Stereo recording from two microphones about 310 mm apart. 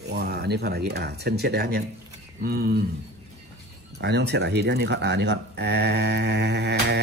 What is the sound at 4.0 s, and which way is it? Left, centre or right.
Speech, right.